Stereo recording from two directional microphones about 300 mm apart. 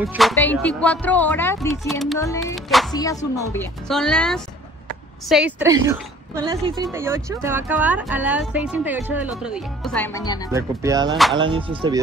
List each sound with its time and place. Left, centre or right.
0.0 s a woman's voice: centre
2.9 s a woman's voice: centre
10.5 s speech: centre